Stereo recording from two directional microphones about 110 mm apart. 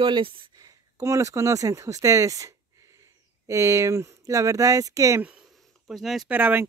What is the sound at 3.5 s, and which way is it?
Speech, 25° right (ahead or behind).